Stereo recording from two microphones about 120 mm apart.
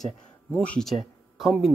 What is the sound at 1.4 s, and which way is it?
Speech, centre (ahead or behind).